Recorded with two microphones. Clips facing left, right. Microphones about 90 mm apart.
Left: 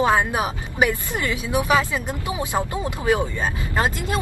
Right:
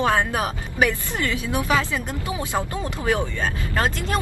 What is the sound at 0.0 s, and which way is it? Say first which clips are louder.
Speech: left 2 dB; 15° left (ahead or behind).